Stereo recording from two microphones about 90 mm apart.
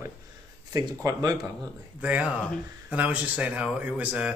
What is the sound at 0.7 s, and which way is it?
Speech, 45° right (ahead or behind).